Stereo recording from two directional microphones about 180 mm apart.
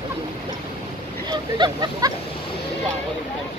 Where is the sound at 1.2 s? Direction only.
25° right (ahead or behind).